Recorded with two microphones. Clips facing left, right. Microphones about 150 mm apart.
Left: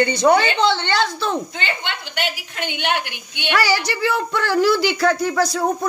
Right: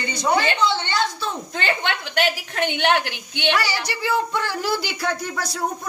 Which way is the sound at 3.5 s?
90° left.